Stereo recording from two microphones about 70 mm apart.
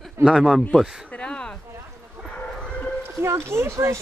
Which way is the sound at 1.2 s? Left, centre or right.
Centre.